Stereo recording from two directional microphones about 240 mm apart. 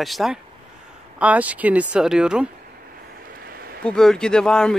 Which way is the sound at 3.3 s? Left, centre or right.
Right.